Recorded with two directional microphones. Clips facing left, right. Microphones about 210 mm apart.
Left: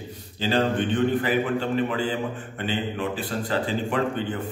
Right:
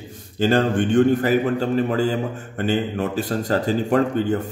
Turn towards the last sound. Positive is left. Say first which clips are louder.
# right 7 dB
turn(degrees=-45)  # may be behind; listen again after turning